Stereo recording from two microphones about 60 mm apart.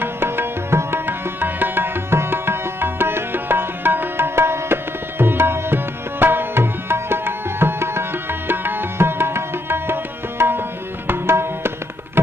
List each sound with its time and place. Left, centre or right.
0.0 s music: right
5.2 s tabla: right